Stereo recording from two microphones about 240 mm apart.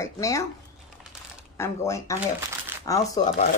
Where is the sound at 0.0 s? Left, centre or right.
Centre.